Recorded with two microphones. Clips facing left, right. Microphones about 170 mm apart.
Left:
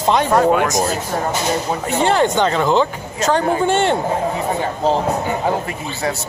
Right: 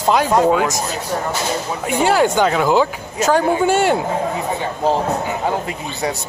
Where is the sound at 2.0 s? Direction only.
5° right (ahead or behind).